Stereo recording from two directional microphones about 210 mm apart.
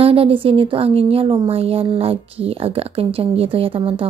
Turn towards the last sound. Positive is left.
turn(degrees=-25)  # may be behind; listen again after turning